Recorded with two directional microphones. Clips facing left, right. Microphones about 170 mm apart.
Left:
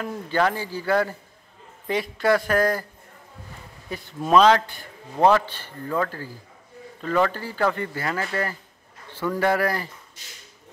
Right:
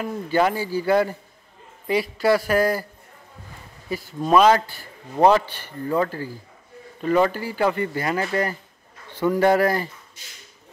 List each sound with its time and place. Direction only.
0.0 s speech: 10° right (ahead or behind)
3.9 s a man's voice: 5° right (ahead or behind); by 9.8 s 25° right (ahead or behind)